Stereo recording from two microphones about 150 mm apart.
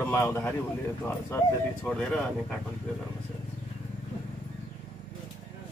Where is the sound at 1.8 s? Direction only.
5° left (ahead or behind).